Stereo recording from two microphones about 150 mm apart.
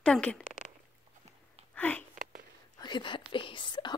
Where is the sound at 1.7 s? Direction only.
10° left (ahead or behind).